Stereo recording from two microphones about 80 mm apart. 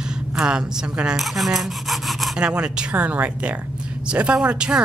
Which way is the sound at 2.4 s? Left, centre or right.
Centre.